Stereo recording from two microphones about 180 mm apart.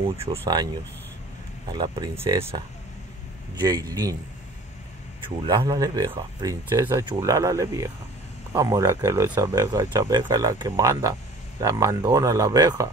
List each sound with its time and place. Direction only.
0.0 s speech: 30° right (ahead or behind)
1.7 s speech: 25° right (ahead or behind)
5.2 s speech: 25° right (ahead or behind)